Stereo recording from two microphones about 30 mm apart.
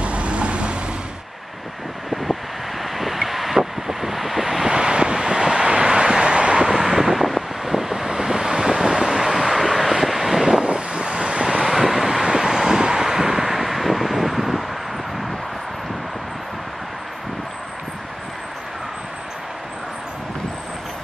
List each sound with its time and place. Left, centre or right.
0.0 s vehicle: right
2.8 s vehicle: centre
4.6 s vehicle: right
6.8 s vehicle: centre
10.6 s vehicle: right
11.6 s vehicle: centre